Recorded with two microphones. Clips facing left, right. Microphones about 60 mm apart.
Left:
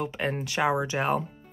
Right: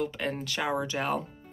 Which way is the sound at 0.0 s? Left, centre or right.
Left.